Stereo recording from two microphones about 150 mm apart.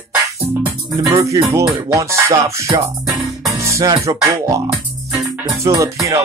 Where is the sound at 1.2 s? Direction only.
20° right (ahead or behind).